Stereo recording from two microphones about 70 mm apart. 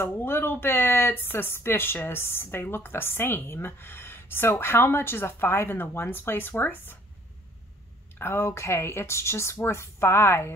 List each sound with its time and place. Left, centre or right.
0.0 s speech: left
8.2 s speech: left